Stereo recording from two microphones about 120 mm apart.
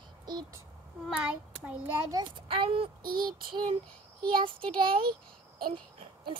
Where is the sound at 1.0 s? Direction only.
10° right (ahead or behind).